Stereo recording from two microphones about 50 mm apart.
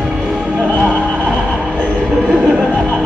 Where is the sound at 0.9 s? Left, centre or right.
Left.